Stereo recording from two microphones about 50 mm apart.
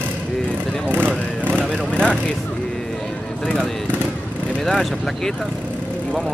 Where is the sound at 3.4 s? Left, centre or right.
Centre.